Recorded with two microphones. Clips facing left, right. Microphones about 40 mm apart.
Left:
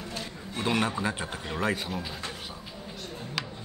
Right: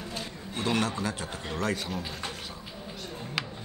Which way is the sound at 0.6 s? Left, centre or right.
Centre.